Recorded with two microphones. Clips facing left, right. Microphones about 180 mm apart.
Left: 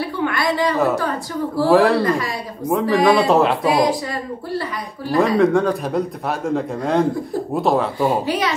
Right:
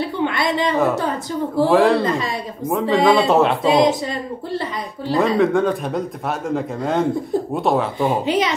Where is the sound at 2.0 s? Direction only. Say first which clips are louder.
Left 1 dB; 20° right (ahead or behind).